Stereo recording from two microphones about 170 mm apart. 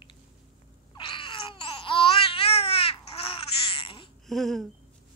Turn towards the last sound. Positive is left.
turn(degrees=0)  # may be behind; listen again after turning